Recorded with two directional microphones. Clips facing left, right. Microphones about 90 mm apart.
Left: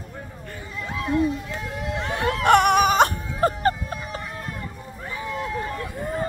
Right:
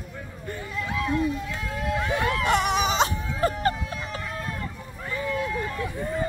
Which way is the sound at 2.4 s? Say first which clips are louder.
Left 9 dB; 60° left (ahead or behind).